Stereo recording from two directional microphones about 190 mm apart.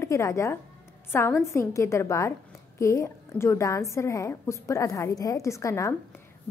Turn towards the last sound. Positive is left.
turn(degrees=15)  # may be behind; listen again after turning